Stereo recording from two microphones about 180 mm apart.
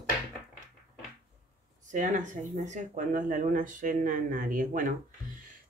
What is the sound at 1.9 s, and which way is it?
Speech, 45° right (ahead or behind).